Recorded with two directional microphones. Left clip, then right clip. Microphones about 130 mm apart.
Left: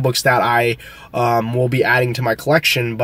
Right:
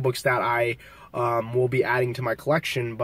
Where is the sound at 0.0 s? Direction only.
25° left (ahead or behind).